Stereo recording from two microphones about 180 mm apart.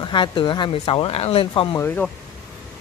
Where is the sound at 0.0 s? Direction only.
25° left (ahead or behind).